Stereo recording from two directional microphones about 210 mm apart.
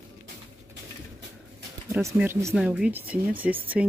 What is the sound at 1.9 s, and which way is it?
Speech, 15° right (ahead or behind).